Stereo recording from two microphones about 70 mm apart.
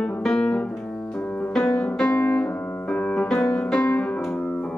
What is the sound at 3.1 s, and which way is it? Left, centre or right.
Piano, centre.